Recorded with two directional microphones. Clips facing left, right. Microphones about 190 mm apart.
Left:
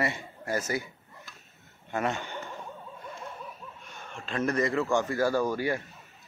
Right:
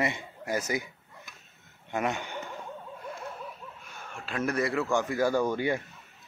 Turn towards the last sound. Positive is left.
turn(degrees=-20)  # may be behind; listen again after turning